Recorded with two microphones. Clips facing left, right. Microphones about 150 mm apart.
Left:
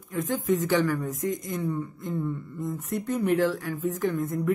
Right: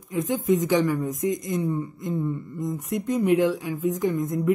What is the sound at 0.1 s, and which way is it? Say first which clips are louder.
Speech: right 3 dB; 15° right (ahead or behind).